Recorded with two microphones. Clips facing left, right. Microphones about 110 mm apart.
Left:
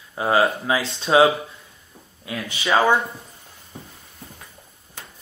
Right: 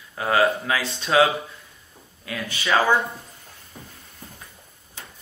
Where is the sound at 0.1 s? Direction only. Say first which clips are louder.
Left 1 dB; 20° left (ahead or behind).